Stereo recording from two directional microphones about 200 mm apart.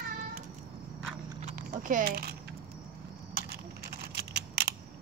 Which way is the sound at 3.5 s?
55° right (ahead or behind).